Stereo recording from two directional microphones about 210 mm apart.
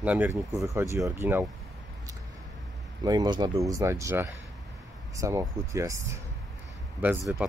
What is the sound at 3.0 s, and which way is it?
Speech, 20° right (ahead or behind).